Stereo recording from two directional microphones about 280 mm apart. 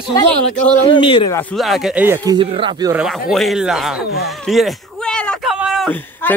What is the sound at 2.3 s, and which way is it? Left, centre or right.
Speech, centre.